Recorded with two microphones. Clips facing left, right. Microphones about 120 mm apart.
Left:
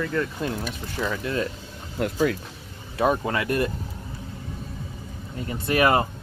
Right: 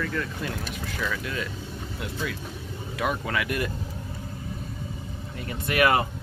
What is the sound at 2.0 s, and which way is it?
Speech, 50° left (ahead or behind).